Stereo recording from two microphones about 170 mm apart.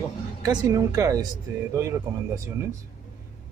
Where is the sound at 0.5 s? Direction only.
20° right (ahead or behind).